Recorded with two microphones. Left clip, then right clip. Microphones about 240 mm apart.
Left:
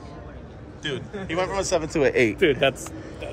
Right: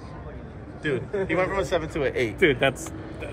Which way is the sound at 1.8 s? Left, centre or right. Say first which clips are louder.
Left 5 dB; left.